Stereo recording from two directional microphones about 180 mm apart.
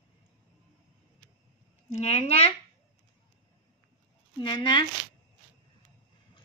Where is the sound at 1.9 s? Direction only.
35° left (ahead or behind).